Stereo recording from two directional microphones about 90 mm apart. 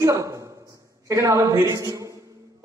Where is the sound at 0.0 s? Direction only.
35° right (ahead or behind).